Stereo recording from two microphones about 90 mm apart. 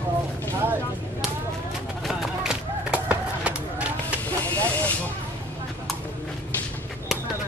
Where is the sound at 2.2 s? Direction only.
5° right (ahead or behind).